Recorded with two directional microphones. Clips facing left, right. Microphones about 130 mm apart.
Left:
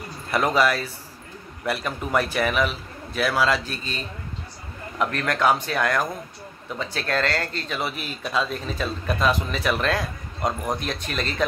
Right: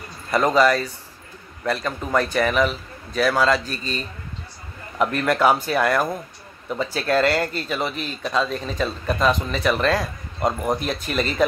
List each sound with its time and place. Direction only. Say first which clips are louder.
0.3 s speech: right 4 dB; 5° left (ahead or behind)